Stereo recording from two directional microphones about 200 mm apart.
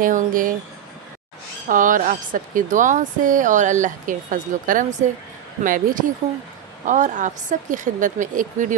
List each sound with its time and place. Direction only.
0.0 s speech: 40° right (ahead or behind)
1.7 s speech: 40° right (ahead or behind)